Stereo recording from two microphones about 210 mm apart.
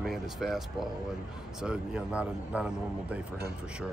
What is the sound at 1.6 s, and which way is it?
Speech, 5° right (ahead or behind).